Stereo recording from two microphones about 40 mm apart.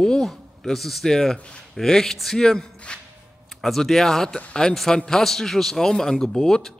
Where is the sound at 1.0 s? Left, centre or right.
Centre.